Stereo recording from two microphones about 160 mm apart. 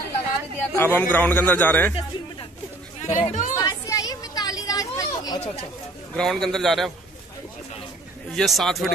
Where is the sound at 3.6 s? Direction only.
20° left (ahead or behind).